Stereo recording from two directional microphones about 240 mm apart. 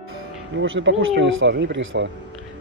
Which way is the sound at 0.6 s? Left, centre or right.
Right.